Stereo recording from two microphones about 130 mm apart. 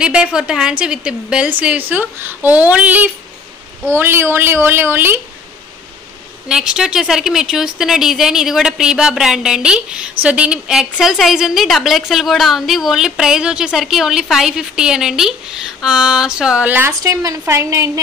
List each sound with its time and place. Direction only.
0.0 s a woman's voice: 5° right (ahead or behind)
6.5 s speech: 5° right (ahead or behind)
17.0 s a woman's voice: 25° right (ahead or behind)